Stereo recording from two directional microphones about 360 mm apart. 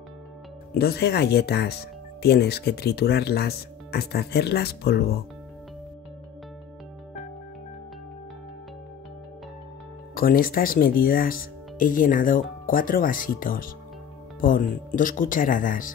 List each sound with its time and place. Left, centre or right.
0.7 s speech: left
10.1 s speech: left